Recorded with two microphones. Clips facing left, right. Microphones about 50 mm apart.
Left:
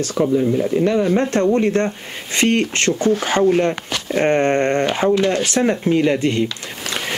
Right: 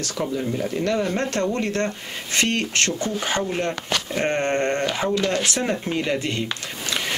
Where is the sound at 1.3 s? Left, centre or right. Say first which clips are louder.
Left 7 dB; left.